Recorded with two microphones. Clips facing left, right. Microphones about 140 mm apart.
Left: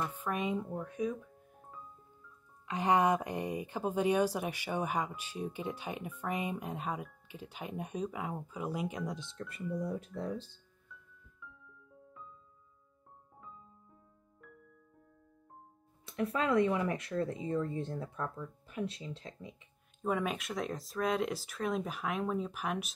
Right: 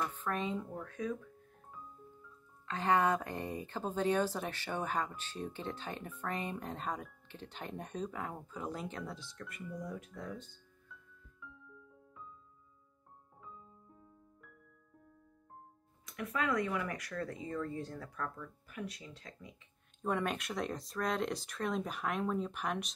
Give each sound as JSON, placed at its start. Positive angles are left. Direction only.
{"t": 0.1, "sound": "speech", "side_deg": 15}
{"t": 2.7, "sound": "speech", "side_deg": 15}
{"t": 16.1, "sound": "speech", "side_deg": 30}
{"t": 20.0, "sound": "speech", "side_deg": 0}